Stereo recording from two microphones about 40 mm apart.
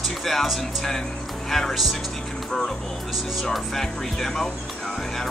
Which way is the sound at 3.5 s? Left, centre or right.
Centre.